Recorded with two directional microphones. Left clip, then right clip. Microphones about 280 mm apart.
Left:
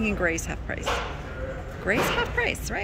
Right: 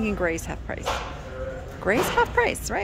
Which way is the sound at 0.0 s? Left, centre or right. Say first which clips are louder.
Even; centre.